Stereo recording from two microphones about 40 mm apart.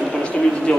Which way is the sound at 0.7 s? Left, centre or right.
Centre.